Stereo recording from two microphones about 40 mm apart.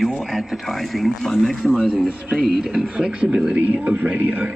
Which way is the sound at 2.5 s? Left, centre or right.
Centre.